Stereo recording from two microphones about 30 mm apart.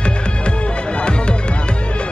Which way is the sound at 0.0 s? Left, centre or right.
Left.